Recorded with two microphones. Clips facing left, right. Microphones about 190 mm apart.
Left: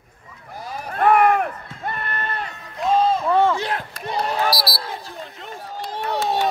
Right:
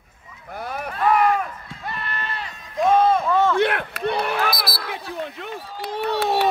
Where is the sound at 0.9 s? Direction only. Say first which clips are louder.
Left 3 dB; 55° left (ahead or behind).